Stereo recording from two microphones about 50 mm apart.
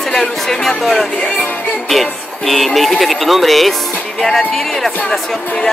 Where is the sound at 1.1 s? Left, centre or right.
Left.